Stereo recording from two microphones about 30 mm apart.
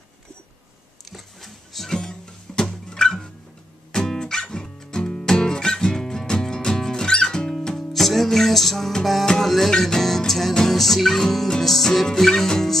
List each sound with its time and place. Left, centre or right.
1.1 s a sound: centre
1.9 s music: left
7.9 s music: centre